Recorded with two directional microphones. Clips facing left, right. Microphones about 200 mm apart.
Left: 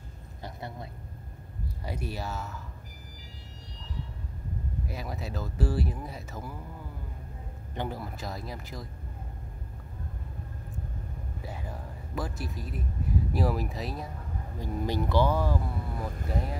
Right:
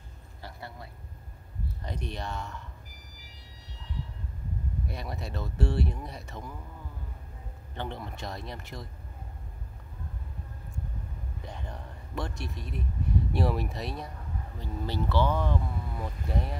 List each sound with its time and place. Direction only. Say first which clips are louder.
0.4 s a sound: left 4 dB; 20° left (ahead or behind)
1.8 s speech: left 2 dB; 10° left (ahead or behind)
4.8 s speech: left 1 dB; centre (ahead or behind)
7.7 s speech: left 2 dB; 10° left (ahead or behind)
11.4 s speech: left 2 dB; 5° left (ahead or behind)
14.6 s speech: left 3 dB; 15° left (ahead or behind)